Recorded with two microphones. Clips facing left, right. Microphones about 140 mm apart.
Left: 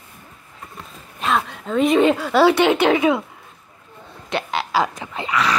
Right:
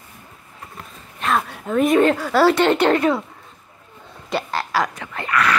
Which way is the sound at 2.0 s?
5° left (ahead or behind).